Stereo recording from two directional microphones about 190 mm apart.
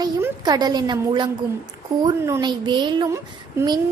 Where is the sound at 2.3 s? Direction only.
25° right (ahead or behind).